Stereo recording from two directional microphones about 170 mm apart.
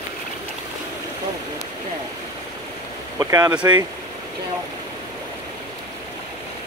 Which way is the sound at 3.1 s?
20° right (ahead or behind).